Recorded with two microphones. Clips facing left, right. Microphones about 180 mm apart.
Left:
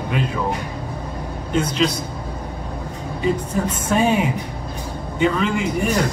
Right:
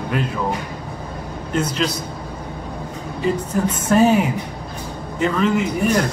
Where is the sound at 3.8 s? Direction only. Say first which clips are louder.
Right 4 dB; 5° right (ahead or behind).